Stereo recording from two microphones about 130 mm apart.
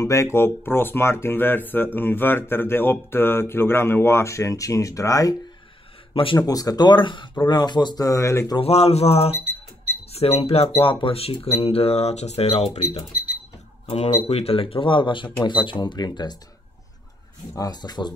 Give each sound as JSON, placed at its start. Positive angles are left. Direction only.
{"t": 0.0, "sound": "speech", "side_deg": 25}
{"t": 6.1, "sound": "speech", "side_deg": 40}
{"t": 6.4, "sound": "speech", "side_deg": 30}
{"t": 8.5, "sound": "speech", "side_deg": 50}
{"t": 17.6, "sound": "speech", "side_deg": 30}